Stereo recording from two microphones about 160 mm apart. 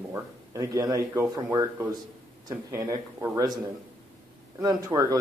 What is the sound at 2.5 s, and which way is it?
Speech, 20° right (ahead or behind).